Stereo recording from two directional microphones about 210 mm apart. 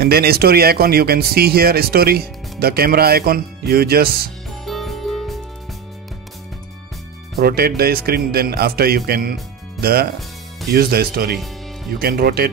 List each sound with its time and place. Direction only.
0.0 s speech: 45° right (ahead or behind)
4.6 s music: centre (ahead or behind)
7.3 s speech: 45° right (ahead or behind)